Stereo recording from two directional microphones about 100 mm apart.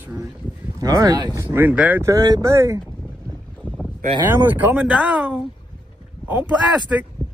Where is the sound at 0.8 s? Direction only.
35° right (ahead or behind).